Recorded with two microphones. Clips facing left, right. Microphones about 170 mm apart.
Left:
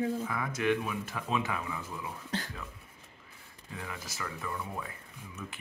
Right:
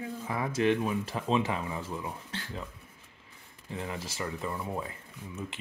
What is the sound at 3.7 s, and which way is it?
Speech, 25° right (ahead or behind).